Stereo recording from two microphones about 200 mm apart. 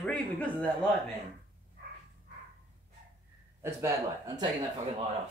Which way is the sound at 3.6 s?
15° right (ahead or behind).